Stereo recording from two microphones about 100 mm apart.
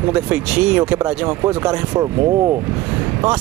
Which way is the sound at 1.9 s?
40° right (ahead or behind).